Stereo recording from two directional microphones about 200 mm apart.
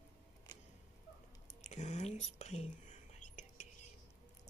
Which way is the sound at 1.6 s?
35° left (ahead or behind).